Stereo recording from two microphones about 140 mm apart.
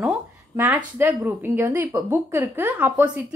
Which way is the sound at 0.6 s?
15° right (ahead or behind).